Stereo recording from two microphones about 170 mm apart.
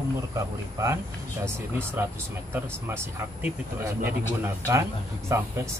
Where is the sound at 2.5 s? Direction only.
10° right (ahead or behind).